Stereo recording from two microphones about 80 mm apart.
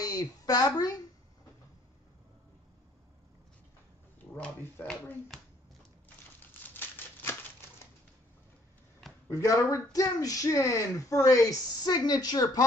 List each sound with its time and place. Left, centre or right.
0.0 s a woman's voice: left
4.4 s speech: left
6.6 s a sound: left
9.3 s speech: left